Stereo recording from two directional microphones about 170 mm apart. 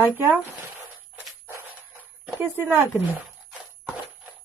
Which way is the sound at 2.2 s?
10° right (ahead or behind).